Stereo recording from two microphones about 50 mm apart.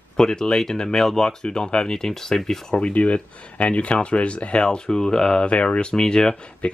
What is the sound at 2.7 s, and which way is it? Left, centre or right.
Speech, left.